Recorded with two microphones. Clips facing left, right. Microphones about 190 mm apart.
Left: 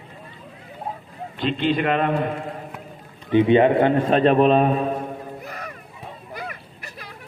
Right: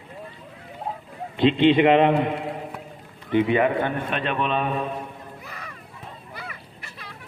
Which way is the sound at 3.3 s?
25° left (ahead or behind).